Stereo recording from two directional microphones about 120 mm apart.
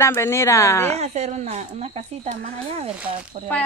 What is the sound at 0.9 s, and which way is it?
Speech, 65° right (ahead or behind).